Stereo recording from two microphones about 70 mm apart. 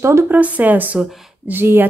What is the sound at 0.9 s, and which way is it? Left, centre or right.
Speech, centre.